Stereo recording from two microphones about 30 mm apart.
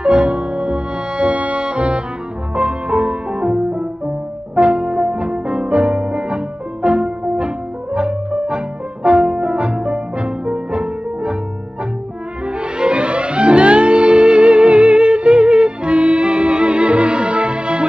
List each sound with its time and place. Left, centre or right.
0.0 s music: right
12.4 s music: right